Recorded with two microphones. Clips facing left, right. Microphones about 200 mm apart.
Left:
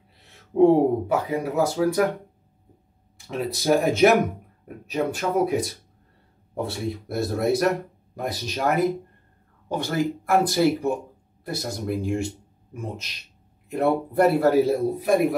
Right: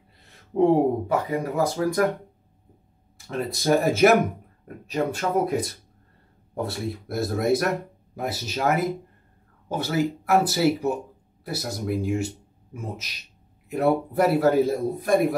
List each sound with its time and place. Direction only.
0.7 s speech: 10° left (ahead or behind)
3.3 s a man's voice: centre (ahead or behind)